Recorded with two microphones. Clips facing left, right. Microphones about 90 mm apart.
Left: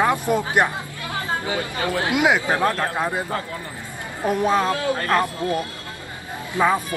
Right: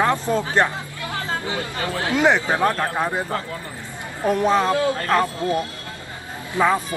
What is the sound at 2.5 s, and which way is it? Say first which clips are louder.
Speech: right 1 dB; 25° right (ahead or behind).